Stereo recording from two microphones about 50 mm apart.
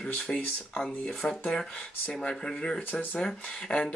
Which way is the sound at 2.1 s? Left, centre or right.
Centre.